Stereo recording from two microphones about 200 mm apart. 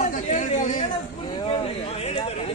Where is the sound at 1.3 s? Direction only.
25° left (ahead or behind).